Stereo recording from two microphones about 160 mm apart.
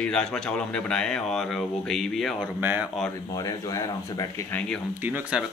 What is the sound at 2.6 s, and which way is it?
Speech, 10° right (ahead or behind).